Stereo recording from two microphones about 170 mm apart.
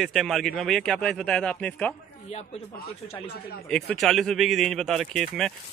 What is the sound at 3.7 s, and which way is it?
Speech, 5° left (ahead or behind).